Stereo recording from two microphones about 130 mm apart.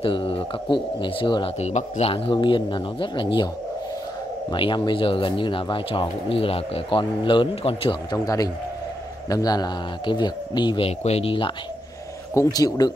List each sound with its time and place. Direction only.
0.0 s speech: 45° left (ahead or behind)
1.6 s a man's voice: 60° left (ahead or behind); by 3.4 s 40° left (ahead or behind)
4.5 s speech: 40° left (ahead or behind)
8.1 s speech: 30° left (ahead or behind)
10.9 s a man's voice: 55° left (ahead or behind)
12.4 s speech: 30° left (ahead or behind)